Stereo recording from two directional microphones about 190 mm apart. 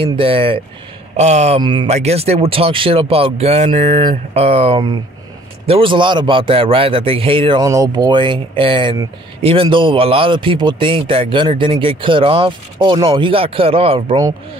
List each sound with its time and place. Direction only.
0.0 s a man's voice: 30° right (ahead or behind)
1.6 s a man's voice: 25° right (ahead or behind)